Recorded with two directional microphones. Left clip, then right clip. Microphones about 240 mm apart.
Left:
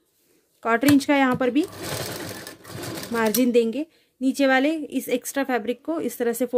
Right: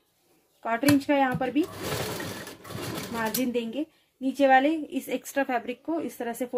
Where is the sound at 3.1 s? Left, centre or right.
Left.